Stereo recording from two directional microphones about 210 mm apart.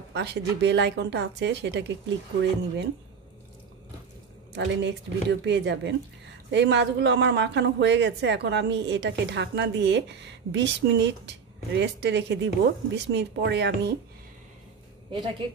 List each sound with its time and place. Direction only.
0.1 s speech: 55° right (ahead or behind)
4.6 s speech: 55° right (ahead or behind)
15.0 s a woman's voice: 25° right (ahead or behind)